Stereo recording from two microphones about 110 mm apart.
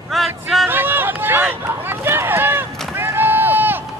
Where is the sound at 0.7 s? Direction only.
20° right (ahead or behind).